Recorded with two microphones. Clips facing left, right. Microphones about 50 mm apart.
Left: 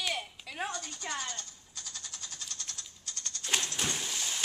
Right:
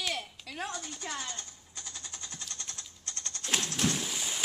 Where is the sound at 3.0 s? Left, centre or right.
Right.